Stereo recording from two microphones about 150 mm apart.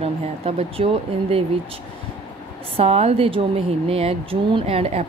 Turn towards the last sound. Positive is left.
turn(degrees=-40)  # may be behind; listen again after turning